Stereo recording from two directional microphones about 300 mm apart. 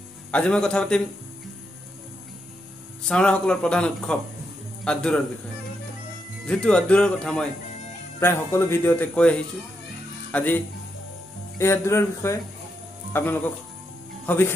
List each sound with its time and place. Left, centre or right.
0.3 s speech: centre
3.1 s speech: centre
6.4 s speech: centre